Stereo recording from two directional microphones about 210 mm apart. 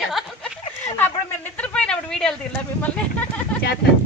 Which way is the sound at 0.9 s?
10° left (ahead or behind).